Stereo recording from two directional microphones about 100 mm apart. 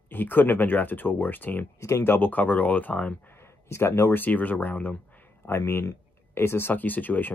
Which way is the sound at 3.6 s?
25° left (ahead or behind).